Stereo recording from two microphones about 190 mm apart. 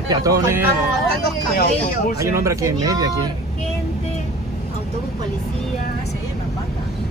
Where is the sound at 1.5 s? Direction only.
55° left (ahead or behind).